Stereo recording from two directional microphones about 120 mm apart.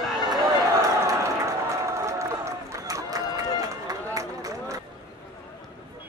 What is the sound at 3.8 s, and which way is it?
Run, 30° right (ahead or behind).